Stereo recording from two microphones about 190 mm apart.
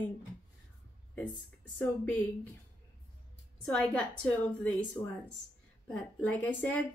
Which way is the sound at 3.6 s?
5° left (ahead or behind).